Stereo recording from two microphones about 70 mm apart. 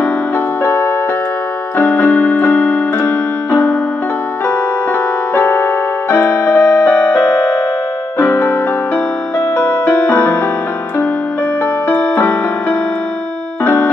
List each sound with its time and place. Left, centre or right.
1.8 s keyboard: left
5.3 s keyboard: left
8.2 s music: left
9.6 s music: left
11.9 s music: left